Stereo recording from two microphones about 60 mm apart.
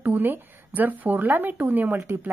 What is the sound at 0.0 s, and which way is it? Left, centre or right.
Speech, right.